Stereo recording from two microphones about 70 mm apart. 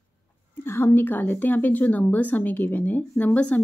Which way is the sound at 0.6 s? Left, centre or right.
Left.